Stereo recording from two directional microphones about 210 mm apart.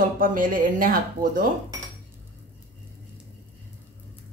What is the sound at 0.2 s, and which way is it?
Speech, 40° right (ahead or behind).